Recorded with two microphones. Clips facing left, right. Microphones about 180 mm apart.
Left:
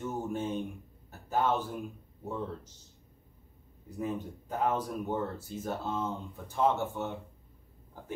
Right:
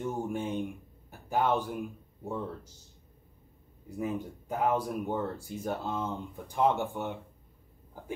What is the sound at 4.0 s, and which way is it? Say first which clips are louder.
Speech: right 1 dB; 10° right (ahead or behind).